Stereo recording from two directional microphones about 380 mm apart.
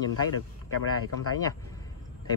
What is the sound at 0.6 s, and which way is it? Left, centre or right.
Speech, left.